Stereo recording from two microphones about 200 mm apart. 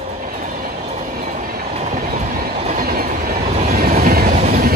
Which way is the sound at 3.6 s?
40° right (ahead or behind).